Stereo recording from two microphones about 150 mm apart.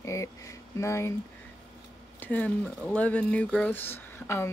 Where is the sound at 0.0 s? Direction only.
20° left (ahead or behind).